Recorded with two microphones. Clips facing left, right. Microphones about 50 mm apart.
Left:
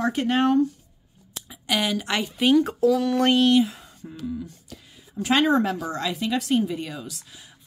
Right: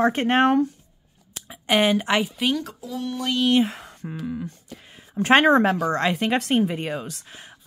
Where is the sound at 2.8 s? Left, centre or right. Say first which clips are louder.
Left 10 dB; left.